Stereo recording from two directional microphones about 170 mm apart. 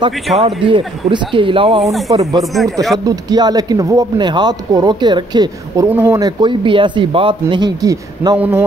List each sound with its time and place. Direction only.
0.4 s speech: 35° right (ahead or behind)
2.3 s speech: centre (ahead or behind)
3.1 s speech: 25° right (ahead or behind)
8.4 s speech: 10° right (ahead or behind)